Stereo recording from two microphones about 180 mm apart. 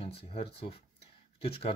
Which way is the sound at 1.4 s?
35° left (ahead or behind).